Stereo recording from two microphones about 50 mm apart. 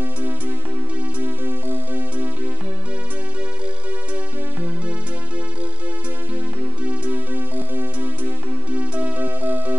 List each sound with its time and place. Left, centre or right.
1.2 s music: right
7.1 s music: right
8.7 s music: right